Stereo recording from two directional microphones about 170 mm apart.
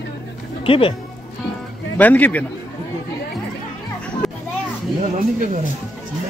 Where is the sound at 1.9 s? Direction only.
10° left (ahead or behind).